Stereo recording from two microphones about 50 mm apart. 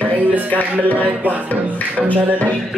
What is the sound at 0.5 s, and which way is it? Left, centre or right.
Music, left.